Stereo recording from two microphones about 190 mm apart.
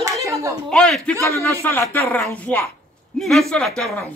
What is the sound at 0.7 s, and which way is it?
A man's voice, 5° left (ahead or behind).